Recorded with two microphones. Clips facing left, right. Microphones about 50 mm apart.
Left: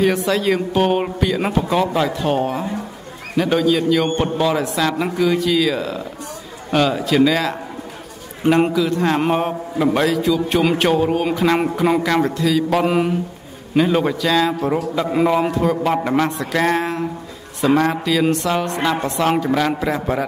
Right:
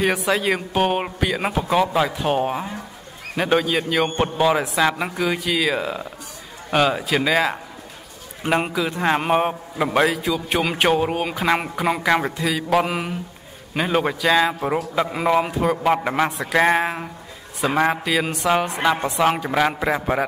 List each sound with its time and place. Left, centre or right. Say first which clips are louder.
0.0 s a man's voice: left 3 dB; centre
13.7 s speech: left 4 dB; centre